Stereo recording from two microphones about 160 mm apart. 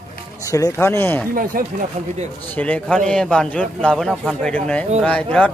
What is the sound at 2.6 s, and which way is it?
A man's voice, 10° left (ahead or behind).